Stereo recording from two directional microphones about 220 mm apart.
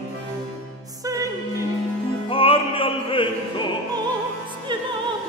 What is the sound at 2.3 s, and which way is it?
Opera, 25° left (ahead or behind).